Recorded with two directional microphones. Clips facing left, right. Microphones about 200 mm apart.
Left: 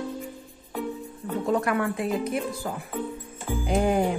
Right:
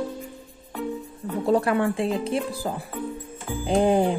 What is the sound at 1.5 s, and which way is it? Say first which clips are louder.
Speech: right 4 dB; 30° right (ahead or behind).